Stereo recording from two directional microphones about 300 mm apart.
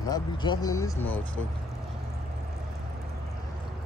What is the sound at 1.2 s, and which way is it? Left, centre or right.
Speech, left.